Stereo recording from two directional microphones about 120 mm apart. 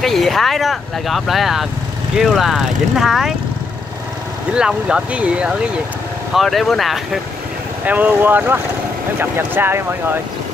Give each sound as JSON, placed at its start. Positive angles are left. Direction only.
{"t": 0.0, "sound": "speech", "side_deg": 0}
{"t": 4.6, "sound": "speech", "side_deg": -5}
{"t": 7.8, "sound": "speech", "side_deg": -15}